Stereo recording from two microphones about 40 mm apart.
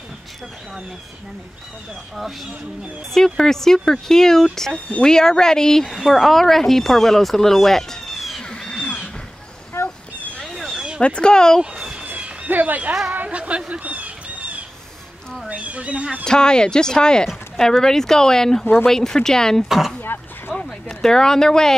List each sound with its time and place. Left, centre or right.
3.3 s speech: centre
5.9 s speech: centre
6.2 s speech: centre
8.5 s crow: left
9.8 s a sound: left
10.5 s a sound: centre
11.0 s speech: left
12.4 s speech: right
13.7 s a sound: right
16.3 s speech: centre
20.0 s a sound: left
21.0 s speech: centre